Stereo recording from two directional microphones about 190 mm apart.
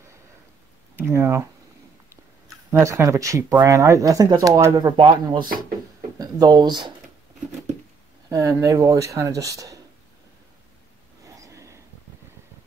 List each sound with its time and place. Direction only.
0.9 s speech: 15° right (ahead or behind)
6.1 s speech: 20° right (ahead or behind)
8.3 s speech: 15° right (ahead or behind)
11.2 s a sound: 15° right (ahead or behind)